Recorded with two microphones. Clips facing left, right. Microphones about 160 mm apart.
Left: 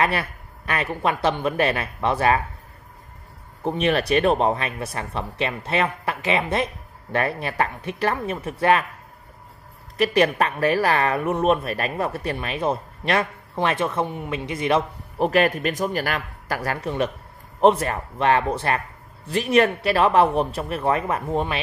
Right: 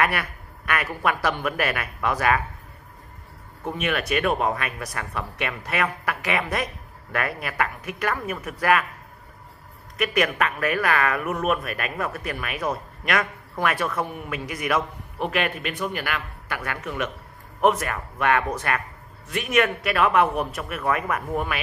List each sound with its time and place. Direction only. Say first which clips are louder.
0.0 s speech: left 2 dB; 30° left (ahead or behind)
3.6 s speech: left 5 dB; 30° left (ahead or behind)
9.9 s speech: left 4 dB; 30° left (ahead or behind)